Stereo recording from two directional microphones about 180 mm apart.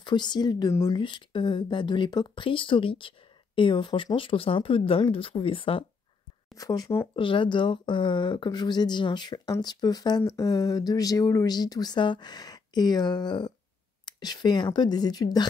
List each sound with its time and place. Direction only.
0.0 s speech: 25° left (ahead or behind)